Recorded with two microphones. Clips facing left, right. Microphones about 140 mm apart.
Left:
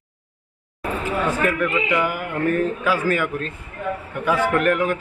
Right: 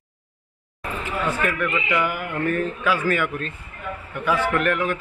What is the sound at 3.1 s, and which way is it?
Speech, 40° left (ahead or behind).